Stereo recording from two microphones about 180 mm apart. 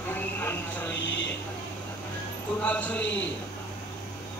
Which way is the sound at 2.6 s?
5° left (ahead or behind).